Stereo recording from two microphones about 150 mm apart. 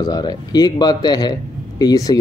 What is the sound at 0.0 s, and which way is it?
A man's voice, 25° left (ahead or behind).